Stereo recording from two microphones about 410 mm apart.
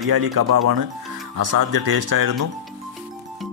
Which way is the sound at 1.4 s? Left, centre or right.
Right.